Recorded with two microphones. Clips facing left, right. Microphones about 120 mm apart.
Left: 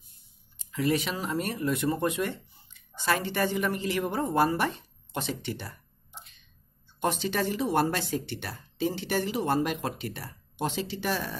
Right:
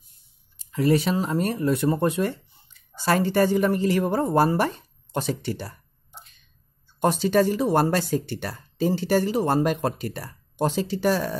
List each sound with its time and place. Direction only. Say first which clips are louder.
0.6 s speech: right 6 dB; 40° right (ahead or behind)
7.0 s speech: right 8 dB; 40° right (ahead or behind)